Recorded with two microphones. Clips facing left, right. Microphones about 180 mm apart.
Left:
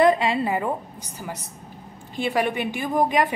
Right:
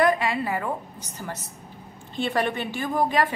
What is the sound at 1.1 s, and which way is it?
A woman's voice, 10° left (ahead or behind).